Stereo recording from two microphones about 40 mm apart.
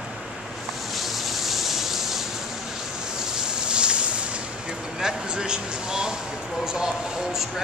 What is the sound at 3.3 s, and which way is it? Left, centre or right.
Boat, centre.